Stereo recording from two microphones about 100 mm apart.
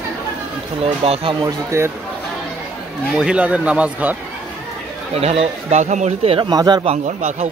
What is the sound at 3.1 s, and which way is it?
Speech, 10° right (ahead or behind).